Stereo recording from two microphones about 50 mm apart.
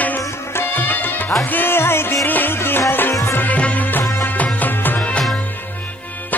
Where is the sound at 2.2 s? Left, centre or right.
Left.